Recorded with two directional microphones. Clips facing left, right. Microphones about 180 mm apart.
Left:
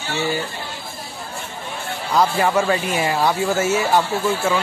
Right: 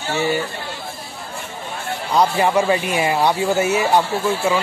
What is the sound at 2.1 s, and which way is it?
Speech, 20° right (ahead or behind).